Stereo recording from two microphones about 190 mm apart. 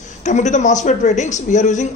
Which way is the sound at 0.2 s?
40° left (ahead or behind).